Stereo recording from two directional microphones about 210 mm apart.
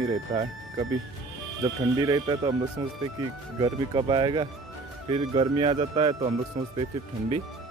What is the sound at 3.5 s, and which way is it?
Speech, 20° right (ahead or behind).